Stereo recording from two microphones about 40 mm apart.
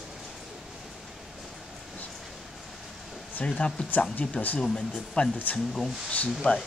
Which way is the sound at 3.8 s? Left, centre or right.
Left.